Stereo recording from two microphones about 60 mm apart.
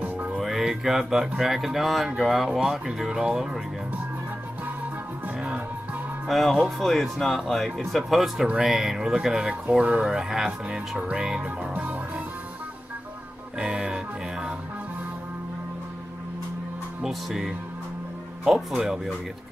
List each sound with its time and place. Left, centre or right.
0.0 s music: right
0.4 s music: centre
1.4 s speech: centre
6.2 s speech: centre
11.7 s music: right
13.6 s music: centre
17.0 s speech: centre